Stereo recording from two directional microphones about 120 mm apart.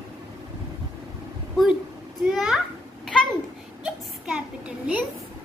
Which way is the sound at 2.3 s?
5° right (ahead or behind).